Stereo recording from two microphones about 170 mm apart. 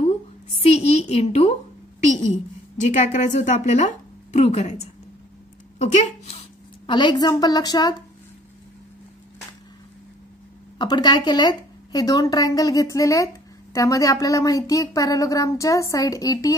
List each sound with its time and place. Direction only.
0.0 s a sound: 35° left (ahead or behind)
2.1 s a woman's voice: 45° left (ahead or behind)
6.9 s speech: 30° left (ahead or behind)
10.8 s speech: 25° left (ahead or behind)